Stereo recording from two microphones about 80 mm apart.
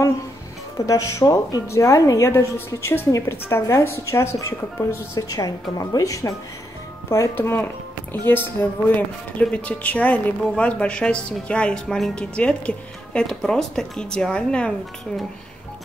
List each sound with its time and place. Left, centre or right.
0.7 s a woman's voice: left
5.1 s a woman's voice: left
7.1 s a woman's voice: left; by 14.7 s centre